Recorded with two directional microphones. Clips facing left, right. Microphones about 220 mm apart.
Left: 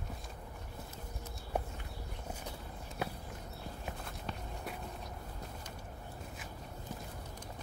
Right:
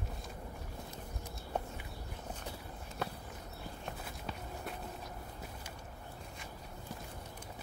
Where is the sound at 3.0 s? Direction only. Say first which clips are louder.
Left 1 dB; 10° left (ahead or behind).